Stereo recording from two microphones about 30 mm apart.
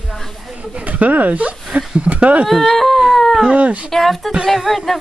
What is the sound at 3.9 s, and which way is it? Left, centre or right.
Speech, centre.